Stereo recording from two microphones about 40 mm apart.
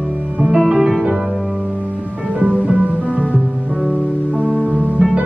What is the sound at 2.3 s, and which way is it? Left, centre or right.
Music, right.